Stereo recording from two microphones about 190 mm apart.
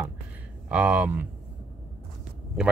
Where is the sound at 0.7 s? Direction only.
5° right (ahead or behind).